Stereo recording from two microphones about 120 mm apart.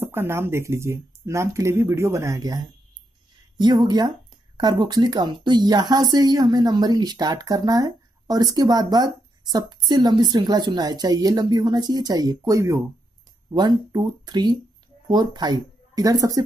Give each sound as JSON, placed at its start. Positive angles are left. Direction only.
{"t": 0.0, "sound": "speech", "side_deg": -20}